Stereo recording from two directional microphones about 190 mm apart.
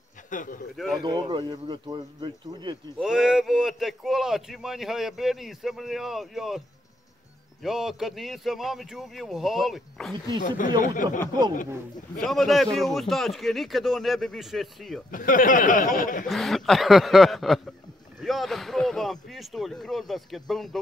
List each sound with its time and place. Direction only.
0.3 s speech: 45° left (ahead or behind)
1.0 s speech: 25° right (ahead or behind)
3.0 s speech: 5° right (ahead or behind)
7.6 s speech: centre (ahead or behind)
10.8 s speech: 45° left (ahead or behind)
12.2 s speech: centre (ahead or behind)
15.0 s speech: 45° left (ahead or behind)
16.3 s speech: centre (ahead or behind)